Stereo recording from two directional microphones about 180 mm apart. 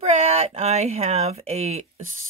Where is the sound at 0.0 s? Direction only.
35° right (ahead or behind).